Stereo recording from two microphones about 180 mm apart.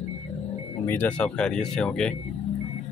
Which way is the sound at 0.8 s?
10° left (ahead or behind).